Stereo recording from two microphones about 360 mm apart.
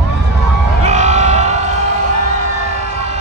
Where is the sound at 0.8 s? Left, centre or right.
Centre.